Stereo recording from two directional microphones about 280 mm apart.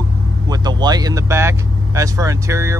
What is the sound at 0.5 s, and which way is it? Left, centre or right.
Speech, centre.